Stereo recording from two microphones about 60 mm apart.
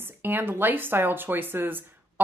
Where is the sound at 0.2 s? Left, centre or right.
Right.